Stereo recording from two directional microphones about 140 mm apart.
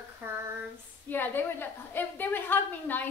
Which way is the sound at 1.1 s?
15° left (ahead or behind).